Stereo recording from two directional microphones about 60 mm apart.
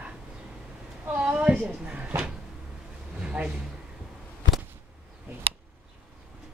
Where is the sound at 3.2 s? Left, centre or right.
Centre.